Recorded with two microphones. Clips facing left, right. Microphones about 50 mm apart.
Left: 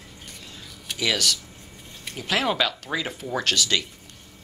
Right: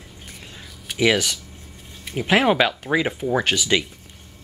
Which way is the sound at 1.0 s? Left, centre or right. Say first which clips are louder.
Right 6 dB; right.